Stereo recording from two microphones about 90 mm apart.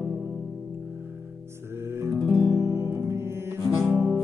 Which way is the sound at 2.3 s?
35° right (ahead or behind).